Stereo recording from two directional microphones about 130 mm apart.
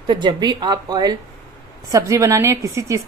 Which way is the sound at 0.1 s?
35° right (ahead or behind).